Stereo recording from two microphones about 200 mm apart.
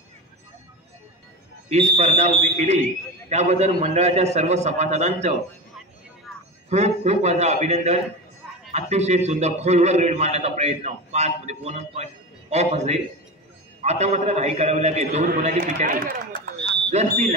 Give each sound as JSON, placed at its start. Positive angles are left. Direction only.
{"t": 1.7, "sound": "a man's voice", "side_deg": -35}
{"t": 6.7, "sound": "a man's voice", "side_deg": -35}
{"t": 16.6, "sound": "a sound", "side_deg": -35}